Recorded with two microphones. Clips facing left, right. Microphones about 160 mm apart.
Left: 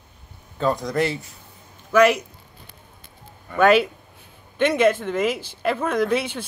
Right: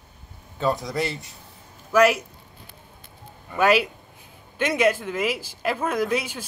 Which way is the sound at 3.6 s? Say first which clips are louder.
Left 3 dB; 5° right (ahead or behind).